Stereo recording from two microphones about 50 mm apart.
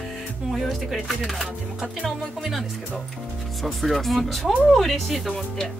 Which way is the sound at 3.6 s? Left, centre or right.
Centre.